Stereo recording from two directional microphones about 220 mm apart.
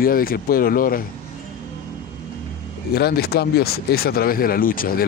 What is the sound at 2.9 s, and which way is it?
Speech, 45° left (ahead or behind).